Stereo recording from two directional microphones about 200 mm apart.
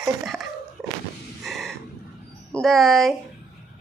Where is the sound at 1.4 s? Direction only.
Centre (ahead or behind).